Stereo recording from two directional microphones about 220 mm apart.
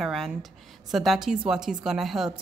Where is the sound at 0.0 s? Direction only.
Centre (ahead or behind).